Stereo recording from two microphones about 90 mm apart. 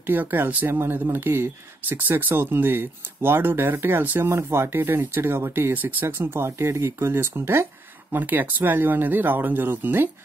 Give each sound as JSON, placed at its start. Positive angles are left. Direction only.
{"t": 0.0, "sound": "speech", "side_deg": -20}